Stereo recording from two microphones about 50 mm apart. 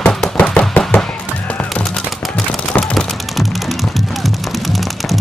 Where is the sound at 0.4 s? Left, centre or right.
Left.